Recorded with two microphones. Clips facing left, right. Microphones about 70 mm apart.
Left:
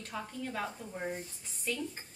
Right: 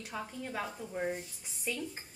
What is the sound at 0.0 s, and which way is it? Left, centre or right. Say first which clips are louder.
A woman's voice: left 1 dB; centre.